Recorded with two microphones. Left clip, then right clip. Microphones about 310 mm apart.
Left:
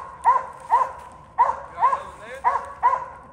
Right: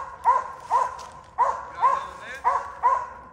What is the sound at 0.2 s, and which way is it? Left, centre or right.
Dog, left.